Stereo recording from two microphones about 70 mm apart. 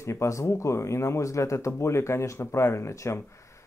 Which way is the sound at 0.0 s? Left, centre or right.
Left.